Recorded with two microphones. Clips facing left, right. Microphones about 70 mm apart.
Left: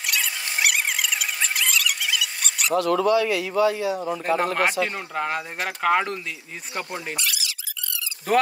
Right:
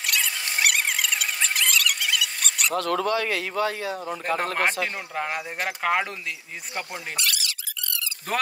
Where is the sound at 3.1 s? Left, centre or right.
Right.